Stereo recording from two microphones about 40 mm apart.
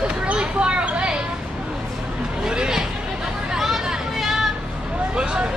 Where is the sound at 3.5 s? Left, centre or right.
Centre.